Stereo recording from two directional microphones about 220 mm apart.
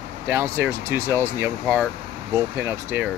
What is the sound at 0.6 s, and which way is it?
Speech, 10° right (ahead or behind).